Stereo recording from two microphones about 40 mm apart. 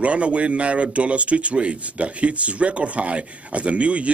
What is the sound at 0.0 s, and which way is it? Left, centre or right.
Speech, right.